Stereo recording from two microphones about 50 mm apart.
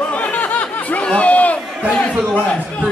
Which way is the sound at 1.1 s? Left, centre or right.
Left.